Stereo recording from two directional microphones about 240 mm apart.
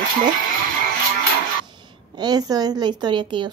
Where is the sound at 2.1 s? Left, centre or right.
Centre.